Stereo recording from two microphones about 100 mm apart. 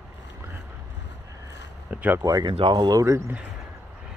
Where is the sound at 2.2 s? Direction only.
40° right (ahead or behind).